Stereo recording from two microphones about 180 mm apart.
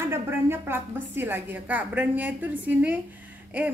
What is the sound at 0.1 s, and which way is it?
A woman's voice, 15° right (ahead or behind).